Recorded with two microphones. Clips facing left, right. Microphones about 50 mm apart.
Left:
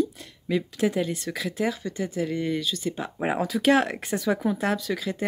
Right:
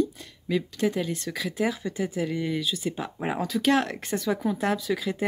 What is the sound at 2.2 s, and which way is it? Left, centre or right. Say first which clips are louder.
Speech: left 1 dB; centre.